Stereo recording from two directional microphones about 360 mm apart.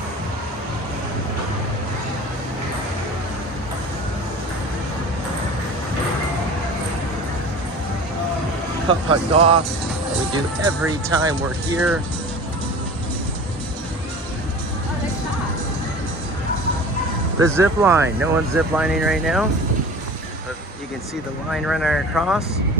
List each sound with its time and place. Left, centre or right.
8.8 s speech: centre
17.6 s speech: centre
21.5 s speech: centre